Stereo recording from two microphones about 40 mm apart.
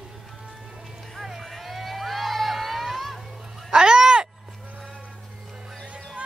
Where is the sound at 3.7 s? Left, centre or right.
Centre.